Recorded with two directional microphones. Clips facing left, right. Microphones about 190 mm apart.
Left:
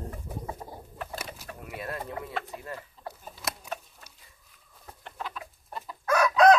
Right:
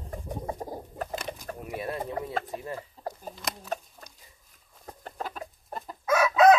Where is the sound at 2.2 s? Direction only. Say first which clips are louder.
Right 4 dB; 35° right (ahead or behind).